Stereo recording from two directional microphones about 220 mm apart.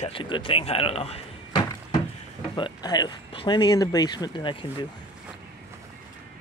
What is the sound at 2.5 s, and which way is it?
Speech, 20° left (ahead or behind).